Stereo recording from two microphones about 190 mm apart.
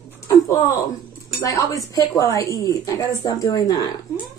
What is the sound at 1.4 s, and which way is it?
Speech, 15° left (ahead or behind).